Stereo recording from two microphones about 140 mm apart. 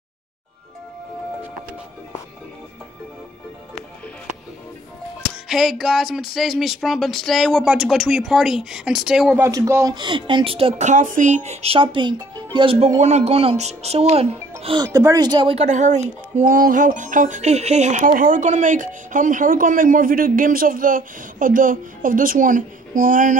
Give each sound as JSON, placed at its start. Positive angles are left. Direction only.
{"t": 5.5, "sound": "speech", "side_deg": -5}
{"t": 9.4, "sound": "speech", "side_deg": -20}
{"t": 9.9, "sound": "speech", "side_deg": -35}
{"t": 10.9, "sound": "speech", "side_deg": -60}
{"t": 14.8, "sound": "speech", "side_deg": -25}
{"t": 15.5, "sound": "speech", "side_deg": -55}
{"t": 16.5, "sound": "speech", "side_deg": -80}